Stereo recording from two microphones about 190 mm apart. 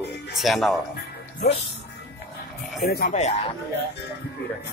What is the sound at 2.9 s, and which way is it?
Speech, 55° left (ahead or behind).